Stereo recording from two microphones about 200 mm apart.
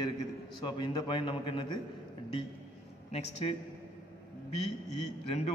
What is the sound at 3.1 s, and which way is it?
Speech, 30° left (ahead or behind).